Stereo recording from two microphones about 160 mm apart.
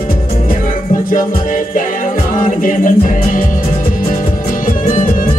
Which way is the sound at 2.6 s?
55° left (ahead or behind).